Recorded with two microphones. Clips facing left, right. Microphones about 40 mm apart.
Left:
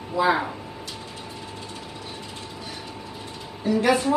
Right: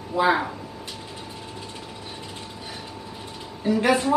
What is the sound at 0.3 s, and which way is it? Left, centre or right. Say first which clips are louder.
Speech: even; centre.